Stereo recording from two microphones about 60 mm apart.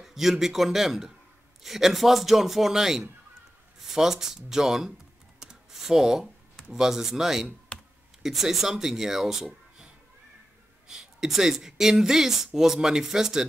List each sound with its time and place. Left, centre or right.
0.0 s a man's voice: centre
5.4 s computer keyboard: centre
6.7 s speech: centre
7.7 s computer keyboard: left
8.2 s speech: centre
10.9 s speech: centre